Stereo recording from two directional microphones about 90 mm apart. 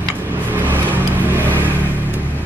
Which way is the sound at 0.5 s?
20° right (ahead or behind).